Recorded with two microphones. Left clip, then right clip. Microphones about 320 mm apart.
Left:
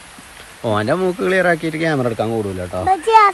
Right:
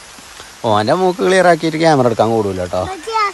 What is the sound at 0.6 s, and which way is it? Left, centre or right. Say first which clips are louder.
Speech: right 4 dB; centre.